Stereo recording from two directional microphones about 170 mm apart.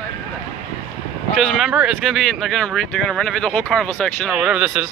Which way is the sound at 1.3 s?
Centre (ahead or behind).